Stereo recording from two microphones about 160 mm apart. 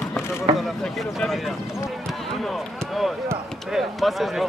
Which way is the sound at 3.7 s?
Centre (ahead or behind).